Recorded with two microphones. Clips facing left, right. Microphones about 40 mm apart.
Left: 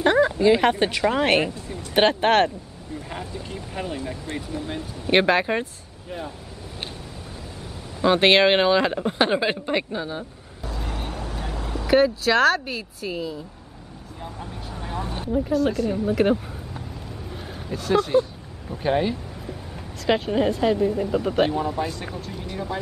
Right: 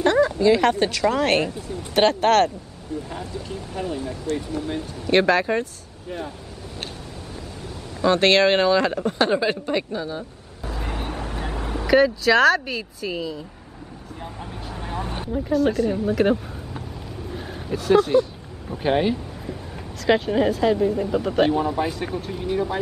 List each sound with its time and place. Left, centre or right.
0.0 s speech: centre
6.0 s speech: centre
8.0 s speech: centre
10.7 s vehicle: right
11.9 s speech: centre
14.7 s vehicle: centre
15.3 s speech: centre
17.6 s speech: centre
18.7 s speech: centre
20.1 s speech: centre
21.5 s speech: centre